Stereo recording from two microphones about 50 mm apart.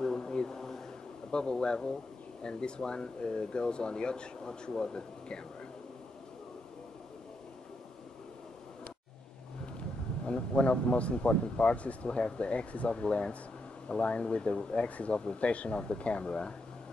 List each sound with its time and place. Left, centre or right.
0.0 s a sound: centre
1.3 s speech: centre
9.8 s speech: left